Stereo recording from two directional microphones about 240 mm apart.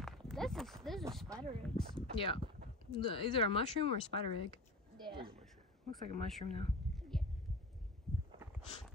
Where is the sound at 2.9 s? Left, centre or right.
Left.